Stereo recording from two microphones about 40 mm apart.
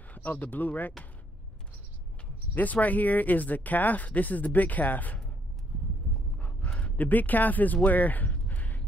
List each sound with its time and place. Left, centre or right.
0.1 s speech: left
2.5 s speech: left
6.3 s horse: left
7.1 s speech: left